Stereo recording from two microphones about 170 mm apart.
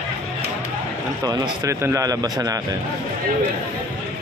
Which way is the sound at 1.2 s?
20° right (ahead or behind).